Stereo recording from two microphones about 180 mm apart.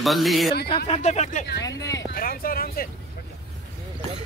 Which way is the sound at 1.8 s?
15° left (ahead or behind).